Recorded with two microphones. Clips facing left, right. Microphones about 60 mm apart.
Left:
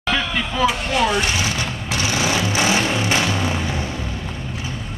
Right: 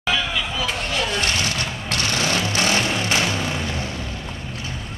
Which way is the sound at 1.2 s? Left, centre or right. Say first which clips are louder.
Left 1 dB; centre.